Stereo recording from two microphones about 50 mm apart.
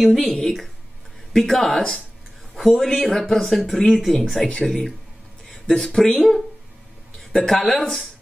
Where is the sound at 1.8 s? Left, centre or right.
Centre.